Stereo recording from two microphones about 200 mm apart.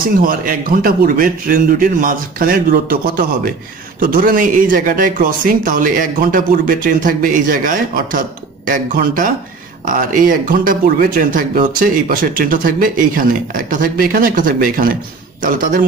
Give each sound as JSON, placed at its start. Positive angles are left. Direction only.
{"t": 0.2, "sound": "speech", "side_deg": -45}